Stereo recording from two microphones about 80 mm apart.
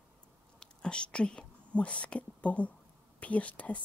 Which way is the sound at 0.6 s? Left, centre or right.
Centre.